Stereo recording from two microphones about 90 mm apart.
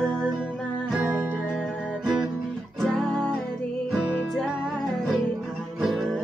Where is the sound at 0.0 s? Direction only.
5° left (ahead or behind).